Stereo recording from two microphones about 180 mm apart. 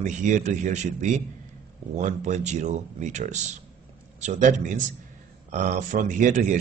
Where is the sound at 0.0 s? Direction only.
40° right (ahead or behind).